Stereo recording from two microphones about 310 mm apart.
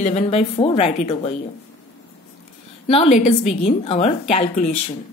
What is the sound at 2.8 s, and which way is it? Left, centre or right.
A woman's voice, centre.